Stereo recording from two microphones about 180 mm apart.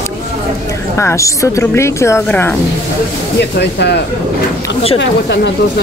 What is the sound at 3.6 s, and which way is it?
Speech, 70° left (ahead or behind).